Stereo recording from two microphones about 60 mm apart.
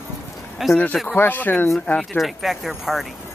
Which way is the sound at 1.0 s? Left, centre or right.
Left.